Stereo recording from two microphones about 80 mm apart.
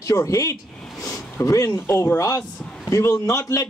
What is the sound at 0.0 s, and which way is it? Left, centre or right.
A man's voice, left.